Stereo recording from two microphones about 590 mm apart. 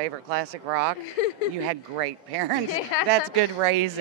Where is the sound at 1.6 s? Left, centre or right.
Right.